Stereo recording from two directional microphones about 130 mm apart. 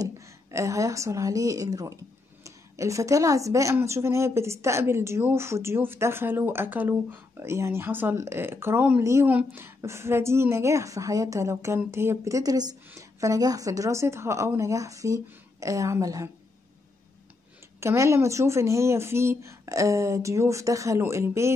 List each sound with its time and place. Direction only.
0.0 s a woman's voice: 25° right (ahead or behind)
17.7 s a woman's voice: 20° right (ahead or behind)